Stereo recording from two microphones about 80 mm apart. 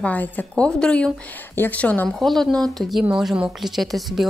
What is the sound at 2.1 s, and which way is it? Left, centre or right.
Speech, centre.